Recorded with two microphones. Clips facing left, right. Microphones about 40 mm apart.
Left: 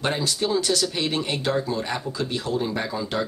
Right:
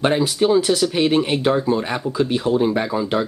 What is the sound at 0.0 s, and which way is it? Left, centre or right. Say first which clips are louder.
Speech: right 7 dB; right.